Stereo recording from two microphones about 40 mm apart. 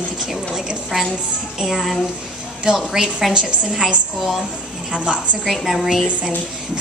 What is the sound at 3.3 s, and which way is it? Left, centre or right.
Speech, right.